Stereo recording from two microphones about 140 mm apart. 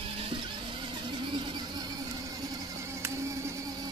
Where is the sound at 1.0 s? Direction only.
35° right (ahead or behind).